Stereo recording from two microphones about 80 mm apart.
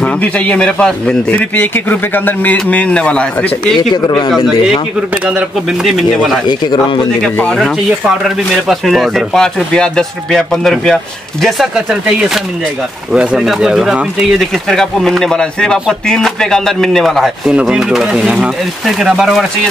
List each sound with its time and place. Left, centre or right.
0.0 s speech: centre
3.7 s speech: left
5.9 s speech: centre
8.2 s speech: centre
11.4 s speech: centre
14.4 s speech: centre
17.5 s speech: centre